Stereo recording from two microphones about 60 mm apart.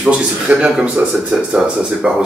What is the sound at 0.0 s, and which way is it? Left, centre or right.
A man's voice, centre.